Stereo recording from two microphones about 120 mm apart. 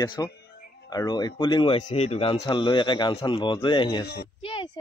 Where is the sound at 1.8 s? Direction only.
60° left (ahead or behind).